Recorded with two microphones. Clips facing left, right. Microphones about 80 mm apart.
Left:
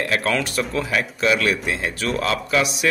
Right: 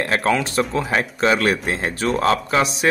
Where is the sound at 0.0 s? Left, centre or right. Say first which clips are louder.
Right 2 dB; right.